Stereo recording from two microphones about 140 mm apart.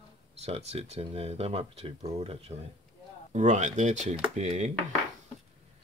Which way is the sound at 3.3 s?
60° right (ahead or behind).